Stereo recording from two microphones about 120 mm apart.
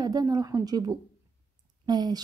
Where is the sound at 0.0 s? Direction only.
30° right (ahead or behind).